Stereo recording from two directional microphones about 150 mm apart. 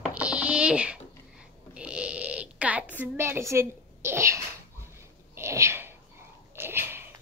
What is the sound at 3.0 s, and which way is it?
A woman's voice, 15° right (ahead or behind).